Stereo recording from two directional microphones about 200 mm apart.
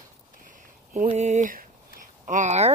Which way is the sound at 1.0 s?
35° right (ahead or behind).